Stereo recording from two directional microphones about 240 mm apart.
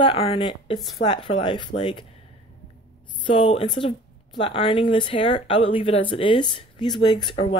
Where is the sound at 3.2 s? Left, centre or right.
Left.